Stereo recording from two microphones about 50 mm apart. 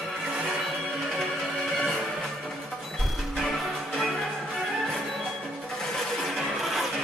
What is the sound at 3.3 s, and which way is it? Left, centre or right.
Music, centre.